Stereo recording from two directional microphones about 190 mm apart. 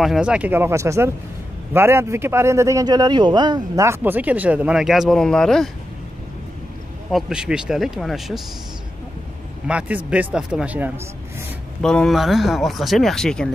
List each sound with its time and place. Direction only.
0.0 s a man's voice: 5° right (ahead or behind)
7.1 s speech: centre (ahead or behind)
9.7 s a man's voice: 5° right (ahead or behind)
11.8 s speech: 5° left (ahead or behind)